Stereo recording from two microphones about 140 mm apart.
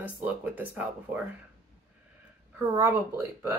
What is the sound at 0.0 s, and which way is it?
Speech, 10° right (ahead or behind).